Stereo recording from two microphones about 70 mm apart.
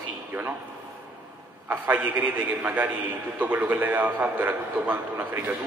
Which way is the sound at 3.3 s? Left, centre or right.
Right.